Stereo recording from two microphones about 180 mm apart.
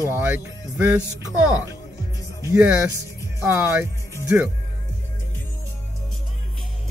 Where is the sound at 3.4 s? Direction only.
10° right (ahead or behind).